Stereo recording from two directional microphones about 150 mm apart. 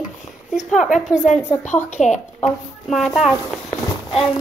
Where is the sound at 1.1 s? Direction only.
55° left (ahead or behind).